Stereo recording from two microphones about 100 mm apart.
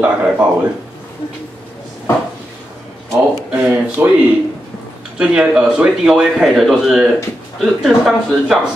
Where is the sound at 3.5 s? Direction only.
15° right (ahead or behind).